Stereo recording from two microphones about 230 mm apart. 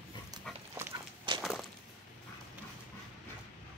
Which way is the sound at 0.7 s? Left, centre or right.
Centre.